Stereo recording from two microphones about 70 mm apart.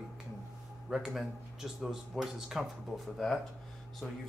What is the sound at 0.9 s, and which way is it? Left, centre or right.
Speech, centre.